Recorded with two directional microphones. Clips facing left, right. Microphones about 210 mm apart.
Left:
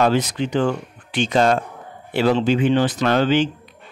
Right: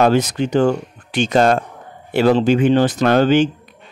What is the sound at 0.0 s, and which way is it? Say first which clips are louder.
Speech: right 3 dB; 45° right (ahead or behind).